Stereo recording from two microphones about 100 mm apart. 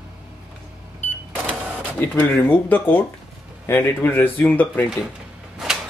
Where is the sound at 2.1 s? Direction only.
15° left (ahead or behind).